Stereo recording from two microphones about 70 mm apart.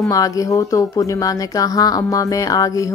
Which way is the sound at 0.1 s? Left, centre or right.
Left.